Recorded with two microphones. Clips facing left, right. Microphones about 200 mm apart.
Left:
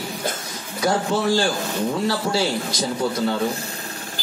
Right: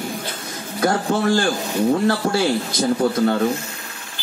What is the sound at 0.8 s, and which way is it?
A man's voice, 55° right (ahead or behind).